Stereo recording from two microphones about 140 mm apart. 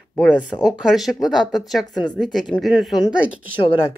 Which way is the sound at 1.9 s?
30° left (ahead or behind).